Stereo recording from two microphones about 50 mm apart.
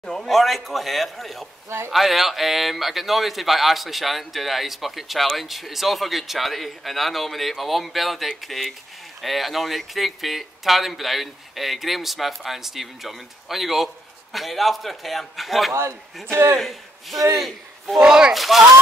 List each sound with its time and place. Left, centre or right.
0.0 s speech: centre
15.7 s speech: right
16.3 s a man's voice: right
16.5 s a man's voice: centre
17.9 s speech: centre
18.3 s speech: centre